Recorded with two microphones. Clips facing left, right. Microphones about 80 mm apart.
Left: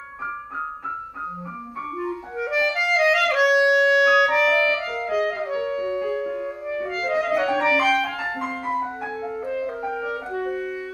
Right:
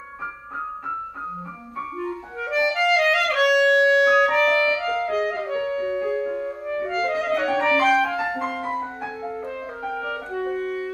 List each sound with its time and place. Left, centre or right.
2.0 s music: centre
7.9 s music: centre
8.7 s music: centre
10.4 s clarinet: centre